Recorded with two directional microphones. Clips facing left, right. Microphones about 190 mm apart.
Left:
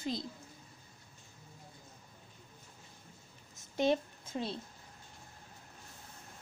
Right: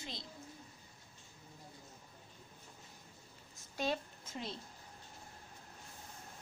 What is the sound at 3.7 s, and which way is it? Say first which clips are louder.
Speech: left 7 dB; 20° left (ahead or behind).